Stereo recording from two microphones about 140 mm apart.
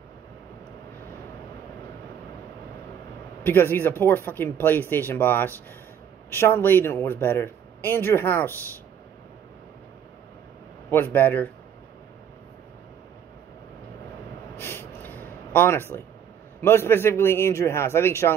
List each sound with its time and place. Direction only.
3.4 s speech: 15° left (ahead or behind)
10.9 s speech: 15° left (ahead or behind)
14.6 s a sound: 15° left (ahead or behind)
16.6 s speech: 15° left (ahead or behind)